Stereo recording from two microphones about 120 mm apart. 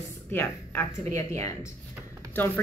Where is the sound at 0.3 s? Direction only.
15° left (ahead or behind).